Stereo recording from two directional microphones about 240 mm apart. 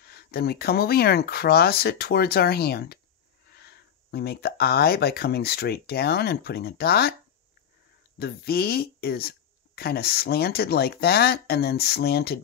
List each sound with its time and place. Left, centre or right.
0.0 s speech: left
8.2 s speech: left